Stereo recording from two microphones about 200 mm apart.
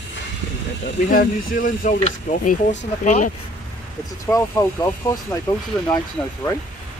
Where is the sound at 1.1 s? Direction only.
40° left (ahead or behind).